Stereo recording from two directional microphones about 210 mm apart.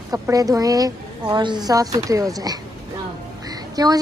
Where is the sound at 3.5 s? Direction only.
20° right (ahead or behind).